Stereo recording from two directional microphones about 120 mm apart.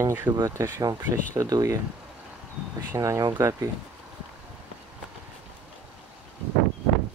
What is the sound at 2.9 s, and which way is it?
Speech, 30° right (ahead or behind).